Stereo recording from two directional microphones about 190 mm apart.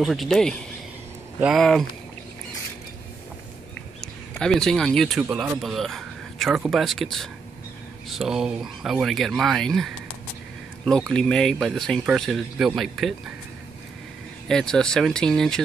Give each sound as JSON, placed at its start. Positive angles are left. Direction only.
{"t": 0.0, "sound": "speech", "side_deg": 0}
{"t": 4.0, "sound": "a man's voice", "side_deg": 5}
{"t": 14.5, "sound": "speech", "side_deg": 5}